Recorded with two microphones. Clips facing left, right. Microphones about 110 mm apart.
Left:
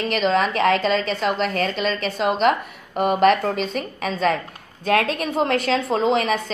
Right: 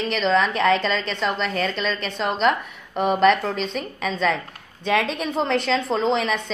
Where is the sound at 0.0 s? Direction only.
5° left (ahead or behind).